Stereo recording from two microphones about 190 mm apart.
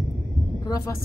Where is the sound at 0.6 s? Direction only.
15° left (ahead or behind).